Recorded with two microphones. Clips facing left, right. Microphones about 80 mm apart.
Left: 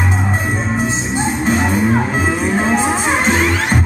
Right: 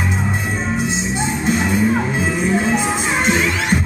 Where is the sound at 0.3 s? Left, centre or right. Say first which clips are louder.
Left 2 dB; left.